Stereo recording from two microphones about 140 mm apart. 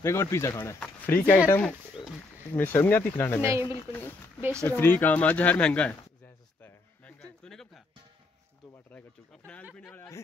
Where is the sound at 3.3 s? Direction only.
20° right (ahead or behind).